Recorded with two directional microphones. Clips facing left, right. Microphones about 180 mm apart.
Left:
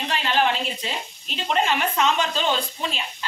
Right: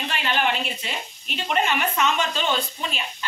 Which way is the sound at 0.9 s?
30° left (ahead or behind).